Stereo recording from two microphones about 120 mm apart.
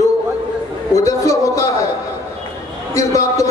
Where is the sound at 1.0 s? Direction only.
25° left (ahead or behind).